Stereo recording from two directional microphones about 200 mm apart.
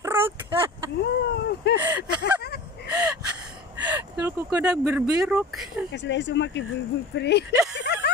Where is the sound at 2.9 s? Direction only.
10° right (ahead or behind).